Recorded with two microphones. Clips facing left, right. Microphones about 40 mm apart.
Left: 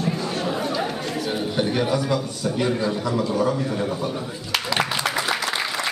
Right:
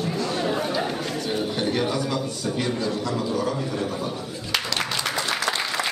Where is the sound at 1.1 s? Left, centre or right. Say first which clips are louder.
Left 1 dB; centre.